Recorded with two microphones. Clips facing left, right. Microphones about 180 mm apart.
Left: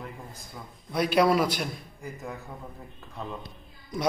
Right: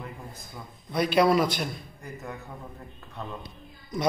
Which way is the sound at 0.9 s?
10° left (ahead or behind).